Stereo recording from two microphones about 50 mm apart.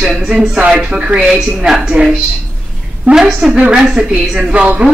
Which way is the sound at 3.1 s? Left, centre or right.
Right.